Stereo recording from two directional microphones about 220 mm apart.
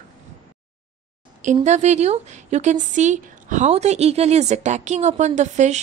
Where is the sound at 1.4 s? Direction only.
35° right (ahead or behind).